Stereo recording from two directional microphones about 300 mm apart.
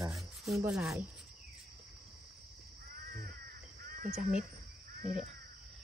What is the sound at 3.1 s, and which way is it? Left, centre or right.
Crow, right.